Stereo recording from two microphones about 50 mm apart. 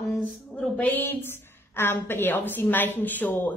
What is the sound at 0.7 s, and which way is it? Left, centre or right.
A woman's voice, left.